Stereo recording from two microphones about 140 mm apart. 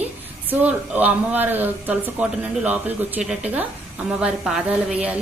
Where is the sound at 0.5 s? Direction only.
10° right (ahead or behind).